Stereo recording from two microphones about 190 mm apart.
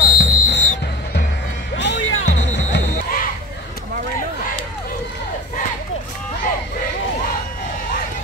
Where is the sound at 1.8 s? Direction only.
70° left (ahead or behind).